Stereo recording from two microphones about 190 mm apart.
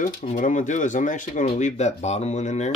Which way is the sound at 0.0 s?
40° left (ahead or behind).